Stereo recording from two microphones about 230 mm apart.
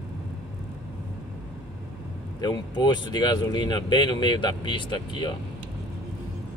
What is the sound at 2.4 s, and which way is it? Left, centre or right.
Speech, centre.